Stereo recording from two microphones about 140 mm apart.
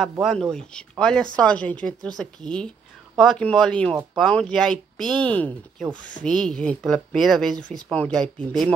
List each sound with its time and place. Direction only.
0.2 s speech: centre (ahead or behind)